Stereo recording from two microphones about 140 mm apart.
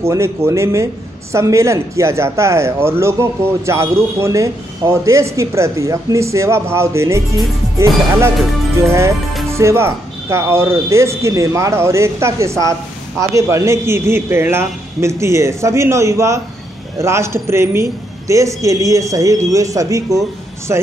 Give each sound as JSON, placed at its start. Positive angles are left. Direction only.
{"t": 0.0, "sound": "speech", "side_deg": -20}
{"t": 9.5, "sound": "speech", "side_deg": -20}